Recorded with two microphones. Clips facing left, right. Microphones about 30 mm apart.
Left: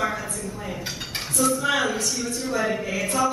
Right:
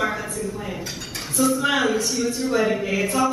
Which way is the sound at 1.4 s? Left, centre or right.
Centre.